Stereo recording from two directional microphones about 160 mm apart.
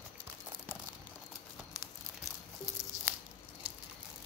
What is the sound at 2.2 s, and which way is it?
Music, 15° right (ahead or behind).